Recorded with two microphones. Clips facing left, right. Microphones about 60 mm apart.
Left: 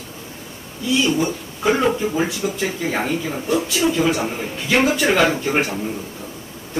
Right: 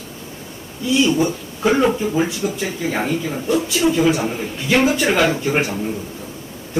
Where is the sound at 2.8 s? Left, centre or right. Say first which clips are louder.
Right 3 dB; centre.